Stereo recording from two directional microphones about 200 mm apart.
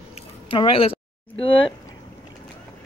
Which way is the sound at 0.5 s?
25° left (ahead or behind).